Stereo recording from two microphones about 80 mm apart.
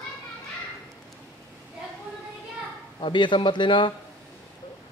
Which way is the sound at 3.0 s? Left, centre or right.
Left.